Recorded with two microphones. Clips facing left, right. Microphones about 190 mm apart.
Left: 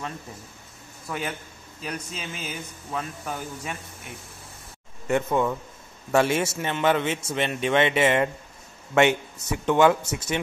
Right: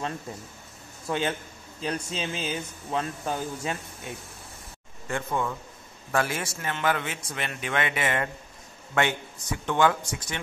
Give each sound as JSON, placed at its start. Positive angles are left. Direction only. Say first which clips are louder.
{"t": 1.0, "sound": "a man's voice", "louder": "right 4 dB", "side_deg": -25}
{"t": 5.0, "sound": "a man's voice", "louder": "left 6 dB", "side_deg": 20}